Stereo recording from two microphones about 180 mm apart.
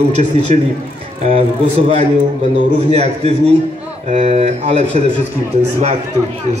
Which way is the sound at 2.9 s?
35° right (ahead or behind).